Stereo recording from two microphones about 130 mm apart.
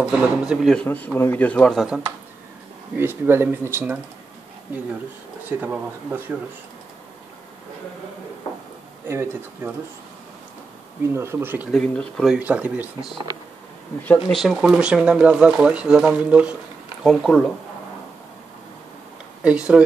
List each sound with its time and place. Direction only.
0.0 s speech: 5° right (ahead or behind)
0.8 s speech: 15° left (ahead or behind)
3.0 s speech: 15° right (ahead or behind)
5.6 s speech: 10° right (ahead or behind)
9.0 s speech: 20° right (ahead or behind)
11.1 s speech: 20° right (ahead or behind)
11.7 s speech: 5° left (ahead or behind)
12.4 s speech: 10° right (ahead or behind)
14.3 s speech: centre (ahead or behind)
19.4 s speech: 10° right (ahead or behind)